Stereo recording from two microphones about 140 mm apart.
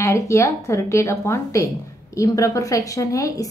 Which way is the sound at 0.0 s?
20° left (ahead or behind).